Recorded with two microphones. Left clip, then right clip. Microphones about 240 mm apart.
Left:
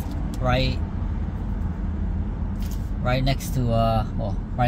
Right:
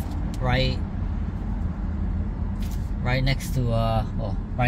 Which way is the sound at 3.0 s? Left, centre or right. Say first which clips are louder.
Left 2 dB; centre.